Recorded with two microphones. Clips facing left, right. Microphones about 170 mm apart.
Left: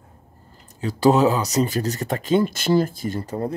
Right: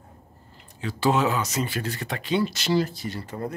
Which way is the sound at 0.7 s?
40° left (ahead or behind).